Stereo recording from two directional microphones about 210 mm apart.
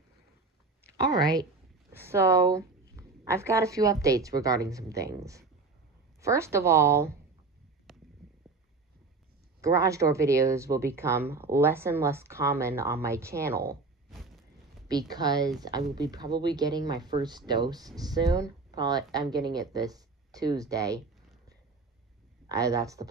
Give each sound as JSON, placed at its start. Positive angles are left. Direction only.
{"t": 1.1, "sound": "speech", "side_deg": -20}
{"t": 7.9, "sound": "a sound", "side_deg": 0}
{"t": 9.6, "sound": "speech", "side_deg": -15}
{"t": 14.1, "sound": "a sound", "side_deg": 0}
{"t": 14.9, "sound": "speech", "side_deg": -20}
{"t": 22.5, "sound": "speech", "side_deg": -15}